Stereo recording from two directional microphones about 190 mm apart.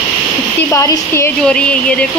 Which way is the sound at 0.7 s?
15° left (ahead or behind).